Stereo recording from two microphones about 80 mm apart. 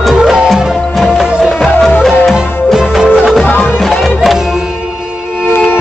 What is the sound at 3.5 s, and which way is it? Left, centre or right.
Music, left.